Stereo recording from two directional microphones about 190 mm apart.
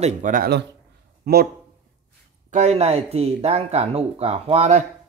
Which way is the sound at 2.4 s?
35° right (ahead or behind).